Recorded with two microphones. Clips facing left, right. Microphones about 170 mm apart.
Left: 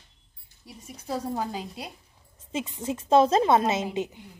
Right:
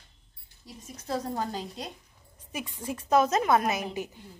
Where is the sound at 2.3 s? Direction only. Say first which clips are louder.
Left 6 dB; 25° left (ahead or behind).